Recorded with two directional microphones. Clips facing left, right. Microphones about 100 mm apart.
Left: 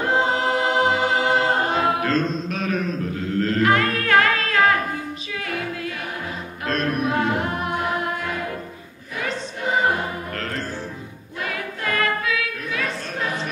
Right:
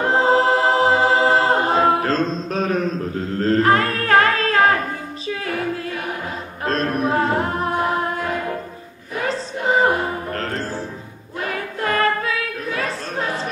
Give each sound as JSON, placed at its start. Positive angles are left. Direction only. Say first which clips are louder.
{"t": 0.2, "sound": "a capella", "louder": "right 5 dB", "side_deg": -35}
{"t": 6.6, "sound": "music", "louder": "right 2 dB", "side_deg": -35}
{"t": 9.2, "sound": "music", "louder": "right 4 dB", "side_deg": -35}
{"t": 11.4, "sound": "choir", "louder": "right 4 dB", "side_deg": -35}